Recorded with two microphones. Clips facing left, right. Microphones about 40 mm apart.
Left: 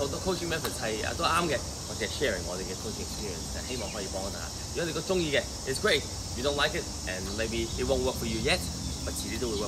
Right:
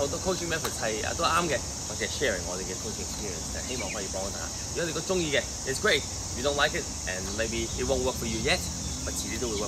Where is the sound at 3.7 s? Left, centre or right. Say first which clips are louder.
Right 1 dB; right.